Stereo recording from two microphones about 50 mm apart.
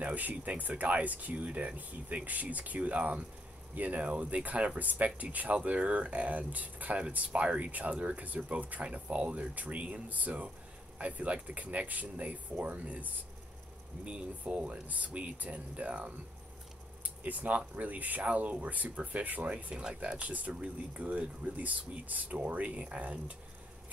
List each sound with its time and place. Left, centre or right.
0.0 s speech: right
17.0 s a sound: right
17.6 s speech: right
19.7 s speech: centre
20.2 s speech: right